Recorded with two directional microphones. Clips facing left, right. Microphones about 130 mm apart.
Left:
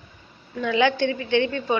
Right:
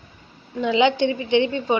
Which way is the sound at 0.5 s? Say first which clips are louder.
Right 2 dB; 20° right (ahead or behind).